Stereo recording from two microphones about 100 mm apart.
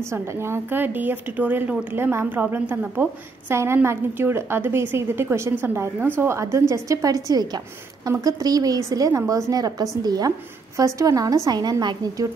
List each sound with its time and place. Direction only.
0.1 s a woman's voice: 25° right (ahead or behind); by 12.3 s 45° right (ahead or behind)